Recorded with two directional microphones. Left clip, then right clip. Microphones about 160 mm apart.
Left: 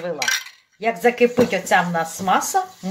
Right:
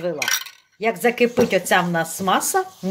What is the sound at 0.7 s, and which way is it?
Speech, 70° right (ahead or behind).